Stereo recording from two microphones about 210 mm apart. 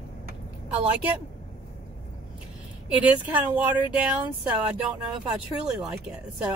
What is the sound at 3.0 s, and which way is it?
Speech, 10° right (ahead or behind).